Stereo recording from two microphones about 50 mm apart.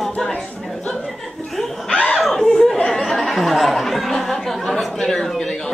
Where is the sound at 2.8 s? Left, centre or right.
Centre.